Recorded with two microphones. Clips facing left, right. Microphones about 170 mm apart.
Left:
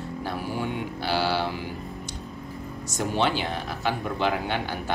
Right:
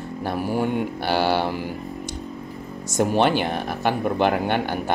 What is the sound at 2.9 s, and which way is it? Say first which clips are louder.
Speech: right 6 dB; 50° right (ahead or behind).